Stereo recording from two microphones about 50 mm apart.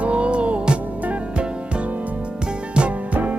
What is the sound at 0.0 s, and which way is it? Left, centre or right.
Music, right.